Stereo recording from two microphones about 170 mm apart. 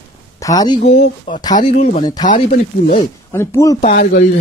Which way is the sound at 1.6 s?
50° left (ahead or behind).